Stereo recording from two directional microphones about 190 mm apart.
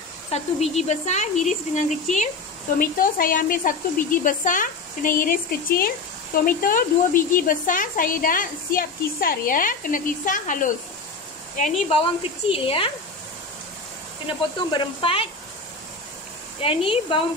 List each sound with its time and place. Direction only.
0.3 s a woman's voice: 35° left (ahead or behind)
11.9 s a woman's voice: 30° left (ahead or behind)
14.7 s a woman's voice: 30° left (ahead or behind)
16.6 s a woman's voice: 25° left (ahead or behind)